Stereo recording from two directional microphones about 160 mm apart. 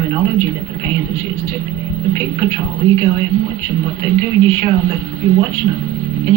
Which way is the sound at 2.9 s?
25° right (ahead or behind).